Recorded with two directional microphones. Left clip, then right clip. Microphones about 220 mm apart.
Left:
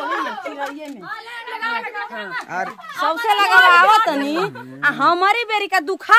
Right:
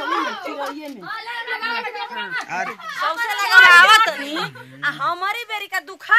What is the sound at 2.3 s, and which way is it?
Speech, 20° left (ahead or behind).